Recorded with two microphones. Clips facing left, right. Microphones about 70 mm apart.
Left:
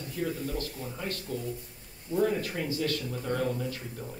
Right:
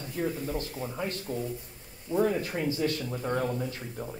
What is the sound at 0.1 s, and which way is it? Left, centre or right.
Speech, right.